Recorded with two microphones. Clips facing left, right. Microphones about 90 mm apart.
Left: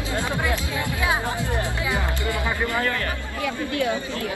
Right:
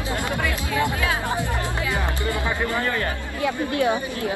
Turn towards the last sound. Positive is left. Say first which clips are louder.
# right 3 dB
turn(degrees=-25)  # may be behind; listen again after turning